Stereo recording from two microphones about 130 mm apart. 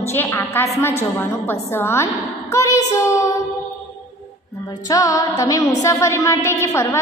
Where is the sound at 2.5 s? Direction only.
25° left (ahead or behind).